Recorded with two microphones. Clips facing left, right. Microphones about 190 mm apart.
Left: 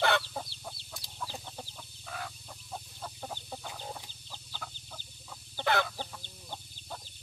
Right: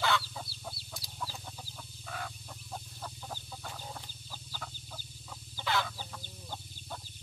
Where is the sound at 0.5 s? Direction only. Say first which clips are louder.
Even; 5° right (ahead or behind).